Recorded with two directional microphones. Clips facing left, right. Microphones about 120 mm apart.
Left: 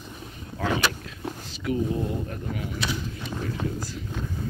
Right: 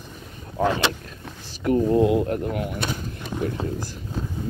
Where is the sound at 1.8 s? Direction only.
75° right (ahead or behind); by 3.3 s 50° right (ahead or behind).